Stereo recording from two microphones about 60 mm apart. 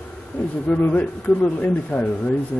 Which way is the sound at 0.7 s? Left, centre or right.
Left.